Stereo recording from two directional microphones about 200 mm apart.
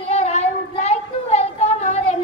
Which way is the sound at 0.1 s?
30° left (ahead or behind).